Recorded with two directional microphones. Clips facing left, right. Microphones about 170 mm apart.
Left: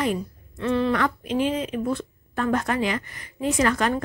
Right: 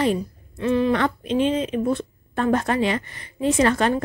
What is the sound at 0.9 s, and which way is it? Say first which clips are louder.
A woman's voice: right 3 dB; 25° right (ahead or behind).